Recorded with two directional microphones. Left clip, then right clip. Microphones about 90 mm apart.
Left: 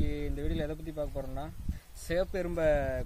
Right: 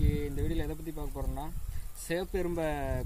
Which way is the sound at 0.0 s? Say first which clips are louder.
Right 1 dB; 60° left (ahead or behind).